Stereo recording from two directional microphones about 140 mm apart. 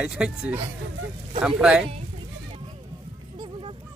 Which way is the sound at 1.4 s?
5° right (ahead or behind).